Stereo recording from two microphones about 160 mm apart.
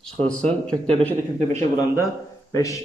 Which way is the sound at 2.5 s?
20° left (ahead or behind).